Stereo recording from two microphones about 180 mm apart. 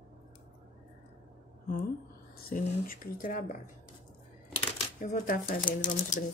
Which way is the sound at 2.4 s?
55° left (ahead or behind).